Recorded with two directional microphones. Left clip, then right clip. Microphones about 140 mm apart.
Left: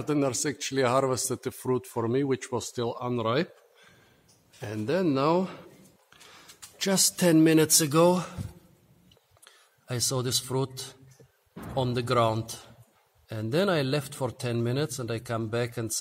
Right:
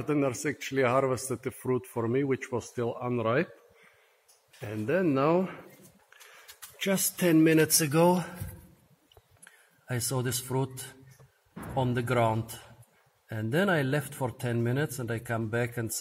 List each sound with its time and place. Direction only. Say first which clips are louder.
0.0 s speech: left 1 dB; 25° left (ahead or behind)
4.6 s speech: even; 25° left (ahead or behind)
6.8 s speech: left 3 dB; 40° left (ahead or behind); by 8.3 s 15° left (ahead or behind)
9.8 s speech: left 3 dB; 25° left (ahead or behind)